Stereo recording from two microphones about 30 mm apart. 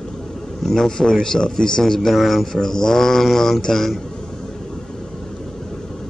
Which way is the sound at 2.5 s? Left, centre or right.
Centre.